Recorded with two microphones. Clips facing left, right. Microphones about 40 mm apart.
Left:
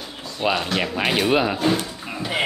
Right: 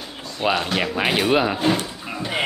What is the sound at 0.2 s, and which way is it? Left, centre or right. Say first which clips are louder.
Speech: right 1 dB; centre.